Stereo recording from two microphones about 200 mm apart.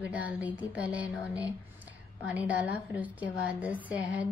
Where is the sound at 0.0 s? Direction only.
5° right (ahead or behind).